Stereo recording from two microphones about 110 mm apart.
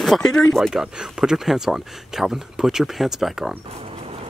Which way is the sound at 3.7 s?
60° right (ahead or behind).